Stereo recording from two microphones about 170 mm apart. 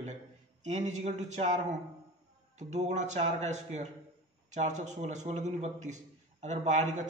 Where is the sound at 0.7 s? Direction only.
45° right (ahead or behind).